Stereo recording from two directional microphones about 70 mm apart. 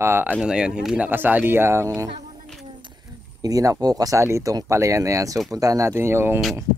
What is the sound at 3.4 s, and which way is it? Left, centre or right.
Speech, right.